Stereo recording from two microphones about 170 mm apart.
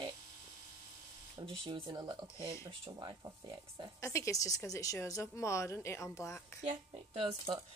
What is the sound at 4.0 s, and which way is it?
A woman's voice, 15° left (ahead or behind).